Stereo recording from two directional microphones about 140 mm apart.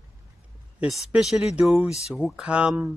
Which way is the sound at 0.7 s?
5° right (ahead or behind).